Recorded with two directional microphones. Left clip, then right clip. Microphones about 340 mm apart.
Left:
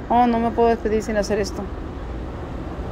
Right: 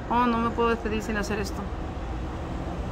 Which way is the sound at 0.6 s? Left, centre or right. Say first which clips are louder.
Left 7 dB; right.